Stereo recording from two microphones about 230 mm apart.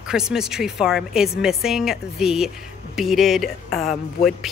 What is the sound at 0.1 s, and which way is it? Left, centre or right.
Speech, centre.